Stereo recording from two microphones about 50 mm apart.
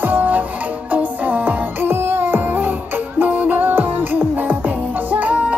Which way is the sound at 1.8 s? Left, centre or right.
Right.